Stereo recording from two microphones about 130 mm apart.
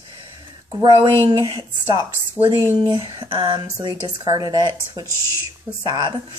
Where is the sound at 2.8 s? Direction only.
35° right (ahead or behind).